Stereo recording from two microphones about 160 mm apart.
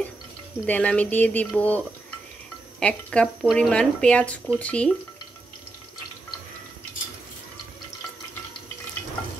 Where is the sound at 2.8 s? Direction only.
5° left (ahead or behind).